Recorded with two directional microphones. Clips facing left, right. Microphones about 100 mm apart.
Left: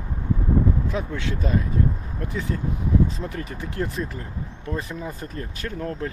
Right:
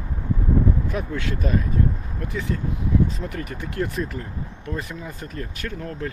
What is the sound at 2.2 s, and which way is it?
Speech, 35° left (ahead or behind).